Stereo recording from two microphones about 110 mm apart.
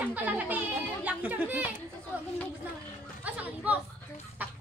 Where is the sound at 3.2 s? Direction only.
15° right (ahead or behind).